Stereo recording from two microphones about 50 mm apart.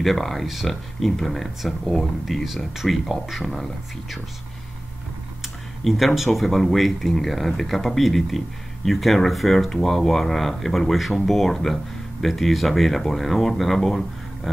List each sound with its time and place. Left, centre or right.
0.0 s speech: centre
5.4 s speech: centre